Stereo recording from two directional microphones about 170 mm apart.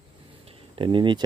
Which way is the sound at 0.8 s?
30° right (ahead or behind).